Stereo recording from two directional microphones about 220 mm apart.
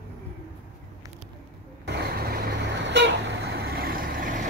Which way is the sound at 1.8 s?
45° right (ahead or behind).